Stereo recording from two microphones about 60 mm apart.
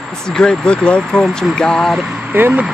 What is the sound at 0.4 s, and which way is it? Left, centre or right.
Speech, centre.